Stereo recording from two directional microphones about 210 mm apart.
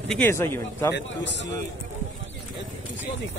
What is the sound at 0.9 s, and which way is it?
Speech, 55° left (ahead or behind).